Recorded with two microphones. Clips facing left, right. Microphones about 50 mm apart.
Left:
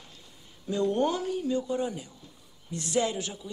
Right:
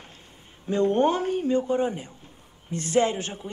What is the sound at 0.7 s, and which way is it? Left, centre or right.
Speech, right.